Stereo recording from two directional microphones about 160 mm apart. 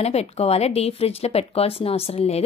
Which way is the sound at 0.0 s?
40° left (ahead or behind).